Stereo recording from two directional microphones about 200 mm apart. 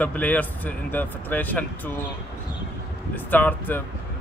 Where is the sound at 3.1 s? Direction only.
10° left (ahead or behind).